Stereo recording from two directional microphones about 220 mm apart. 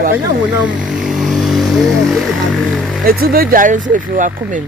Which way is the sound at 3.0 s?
40° right (ahead or behind).